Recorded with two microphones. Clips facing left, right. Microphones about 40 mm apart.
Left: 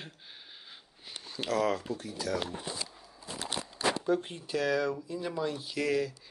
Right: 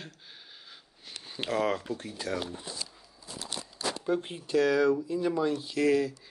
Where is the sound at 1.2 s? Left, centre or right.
Right.